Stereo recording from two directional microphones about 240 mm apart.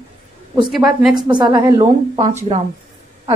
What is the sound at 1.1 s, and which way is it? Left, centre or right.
A woman's voice, centre.